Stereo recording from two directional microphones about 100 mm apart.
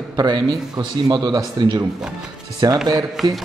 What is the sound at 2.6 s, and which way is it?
Speech, 40° right (ahead or behind).